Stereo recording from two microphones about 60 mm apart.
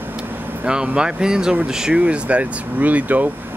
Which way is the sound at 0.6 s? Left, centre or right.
Centre.